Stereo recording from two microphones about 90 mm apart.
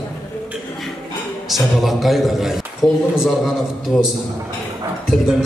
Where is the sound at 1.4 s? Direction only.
Centre (ahead or behind).